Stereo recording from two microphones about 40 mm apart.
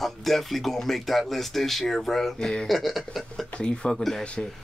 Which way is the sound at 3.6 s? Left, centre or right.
Left.